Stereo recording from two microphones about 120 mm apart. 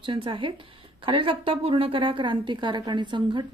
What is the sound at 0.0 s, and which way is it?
Speech, 45° right (ahead or behind).